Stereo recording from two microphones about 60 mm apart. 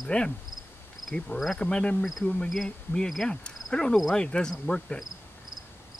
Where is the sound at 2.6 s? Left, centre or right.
Centre.